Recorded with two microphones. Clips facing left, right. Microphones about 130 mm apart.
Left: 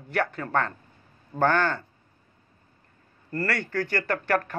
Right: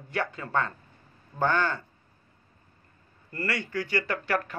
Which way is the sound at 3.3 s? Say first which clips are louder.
Left 3 dB; 50° left (ahead or behind).